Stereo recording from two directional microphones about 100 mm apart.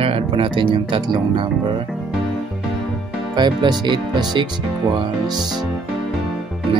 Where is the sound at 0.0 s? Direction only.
65° right (ahead or behind).